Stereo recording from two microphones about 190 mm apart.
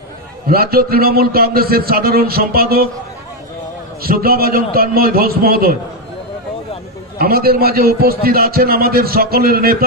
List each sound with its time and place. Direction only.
0.5 s a man's voice: 50° right (ahead or behind)
4.0 s a man's voice: 50° right (ahead or behind)
7.2 s a man's voice: 50° right (ahead or behind)